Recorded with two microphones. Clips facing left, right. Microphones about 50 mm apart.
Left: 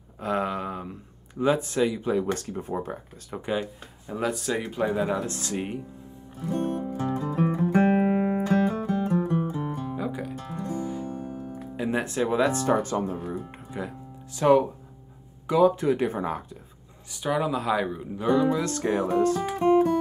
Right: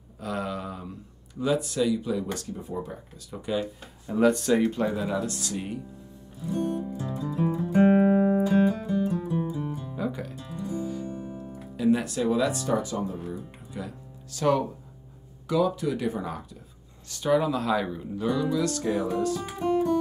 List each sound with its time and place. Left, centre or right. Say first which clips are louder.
0.2 s speech: left 4 dB; left
4.1 s speech: right 6 dB; centre
4.8 s speech: left 2 dB; left
6.4 s music: left 1 dB; left
8.5 s music: right 1 dB; left
9.9 s music: left 1 dB; centre
10.3 s music: left 1 dB; left
11.7 s speech: right 3 dB; left
13.7 s music: left 3 dB; left
15.4 s speech: left 5 dB; left
17.1 s speech: right 2 dB; centre
18.2 s speech: left 3 dB; left